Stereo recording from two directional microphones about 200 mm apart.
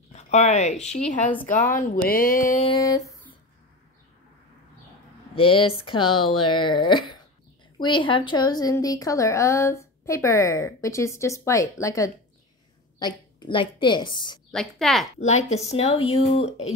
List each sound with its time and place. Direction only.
0.1 s a woman's voice: 35° left (ahead or behind)
5.3 s a woman's voice: 25° left (ahead or behind)
14.5 s a woman's voice: centre (ahead or behind)
15.1 s speech: 35° left (ahead or behind)